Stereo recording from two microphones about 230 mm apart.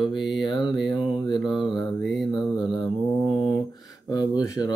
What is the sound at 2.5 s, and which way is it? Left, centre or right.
Mantra, centre.